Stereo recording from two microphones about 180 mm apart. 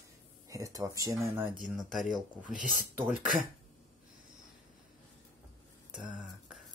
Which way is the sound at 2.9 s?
10° right (ahead or behind).